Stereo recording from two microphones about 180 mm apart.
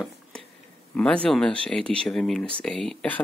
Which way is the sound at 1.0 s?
5° left (ahead or behind).